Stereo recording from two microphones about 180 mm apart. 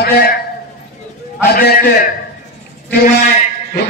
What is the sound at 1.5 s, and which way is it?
Speech, 55° left (ahead or behind).